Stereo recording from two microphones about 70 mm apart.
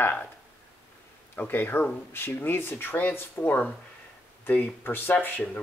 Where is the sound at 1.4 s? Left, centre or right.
Left.